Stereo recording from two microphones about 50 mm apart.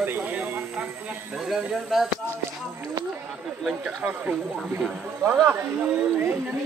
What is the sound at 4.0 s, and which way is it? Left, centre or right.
Speech, right.